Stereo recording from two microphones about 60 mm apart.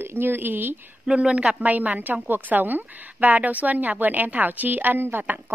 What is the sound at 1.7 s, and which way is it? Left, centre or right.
A woman's voice, right.